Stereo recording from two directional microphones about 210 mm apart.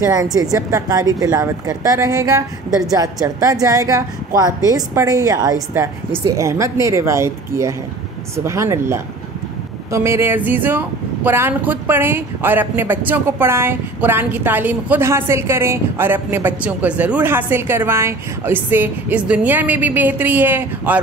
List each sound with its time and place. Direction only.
0.0 s speech: 15° right (ahead or behind)